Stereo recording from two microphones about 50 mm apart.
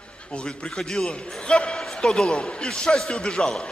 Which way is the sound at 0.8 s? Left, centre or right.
Centre.